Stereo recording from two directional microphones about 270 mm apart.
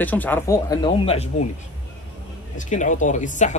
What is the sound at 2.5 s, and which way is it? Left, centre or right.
Speech, left.